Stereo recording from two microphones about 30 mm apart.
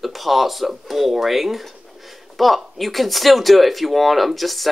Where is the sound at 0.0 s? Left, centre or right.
Centre.